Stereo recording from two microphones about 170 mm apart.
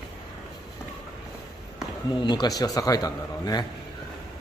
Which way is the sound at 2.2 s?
25° left (ahead or behind).